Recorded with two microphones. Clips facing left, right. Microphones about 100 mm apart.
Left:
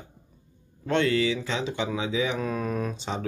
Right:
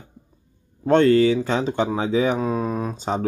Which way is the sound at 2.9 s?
45° right (ahead or behind).